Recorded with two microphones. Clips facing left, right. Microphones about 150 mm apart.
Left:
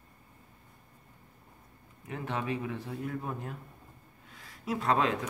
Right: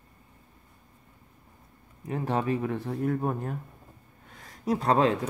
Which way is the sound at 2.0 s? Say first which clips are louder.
Right 7 dB; 40° right (ahead or behind).